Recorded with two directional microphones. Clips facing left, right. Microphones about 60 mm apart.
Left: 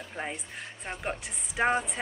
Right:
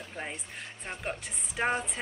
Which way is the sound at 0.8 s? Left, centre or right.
Centre.